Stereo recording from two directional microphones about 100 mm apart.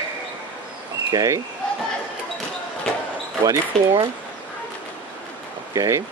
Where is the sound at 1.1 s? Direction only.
35° right (ahead or behind).